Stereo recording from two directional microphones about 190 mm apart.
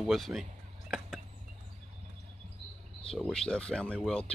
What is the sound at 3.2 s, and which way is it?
Speech, centre (ahead or behind).